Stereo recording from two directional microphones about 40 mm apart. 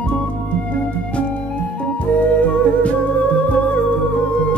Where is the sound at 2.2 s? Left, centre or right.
Left.